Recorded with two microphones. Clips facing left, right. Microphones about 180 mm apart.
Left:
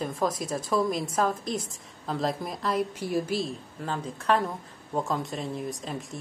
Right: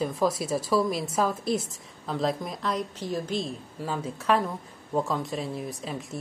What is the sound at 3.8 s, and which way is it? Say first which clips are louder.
A woman's voice: right 2 dB; 5° right (ahead or behind).